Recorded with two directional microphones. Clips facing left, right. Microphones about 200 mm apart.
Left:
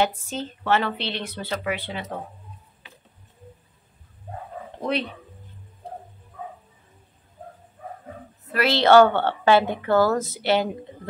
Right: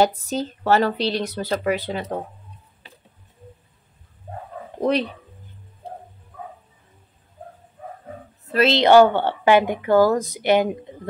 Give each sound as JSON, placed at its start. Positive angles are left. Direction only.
{"t": 0.0, "sound": "speech", "side_deg": -40}
{"t": 8.5, "sound": "a woman's voice", "side_deg": -25}